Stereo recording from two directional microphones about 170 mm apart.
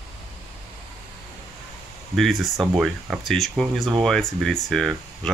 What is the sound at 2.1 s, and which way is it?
Speech, centre (ahead or behind).